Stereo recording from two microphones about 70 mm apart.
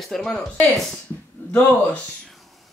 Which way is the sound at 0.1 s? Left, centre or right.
Centre.